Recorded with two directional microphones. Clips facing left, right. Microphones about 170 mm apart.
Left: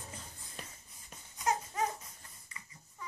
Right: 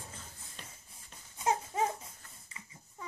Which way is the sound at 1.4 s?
25° right (ahead or behind).